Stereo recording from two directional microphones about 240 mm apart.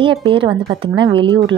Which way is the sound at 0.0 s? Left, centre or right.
Right.